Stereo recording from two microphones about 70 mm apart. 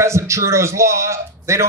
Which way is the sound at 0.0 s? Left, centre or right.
Right.